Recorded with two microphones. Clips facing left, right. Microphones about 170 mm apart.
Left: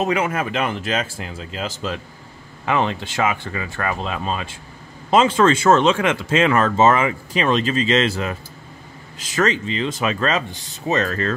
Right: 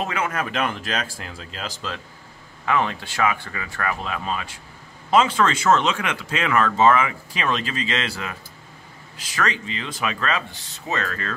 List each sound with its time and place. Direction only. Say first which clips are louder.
0.0 s speech: left 5 dB; 15° left (ahead or behind)
2.6 s speech: left 2 dB; 25° left (ahead or behind)